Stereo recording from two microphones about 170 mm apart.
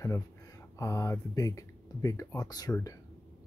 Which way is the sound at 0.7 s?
20° left (ahead or behind).